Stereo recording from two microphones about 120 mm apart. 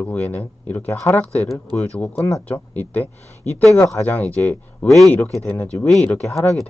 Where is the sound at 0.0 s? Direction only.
15° left (ahead or behind).